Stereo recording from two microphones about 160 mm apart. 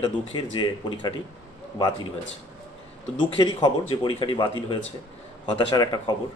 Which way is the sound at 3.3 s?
30° left (ahead or behind).